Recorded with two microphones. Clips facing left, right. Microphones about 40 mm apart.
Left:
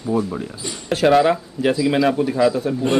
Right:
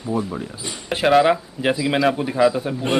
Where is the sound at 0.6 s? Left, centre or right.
Centre.